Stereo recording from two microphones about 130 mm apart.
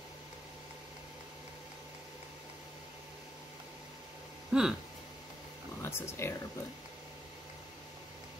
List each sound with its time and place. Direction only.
4.5 s speech: 5° right (ahead or behind)
5.8 s speech: 20° left (ahead or behind)